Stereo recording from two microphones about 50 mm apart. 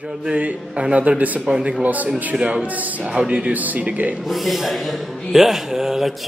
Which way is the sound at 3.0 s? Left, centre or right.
Centre.